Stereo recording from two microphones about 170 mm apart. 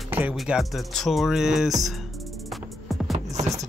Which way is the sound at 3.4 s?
Centre (ahead or behind).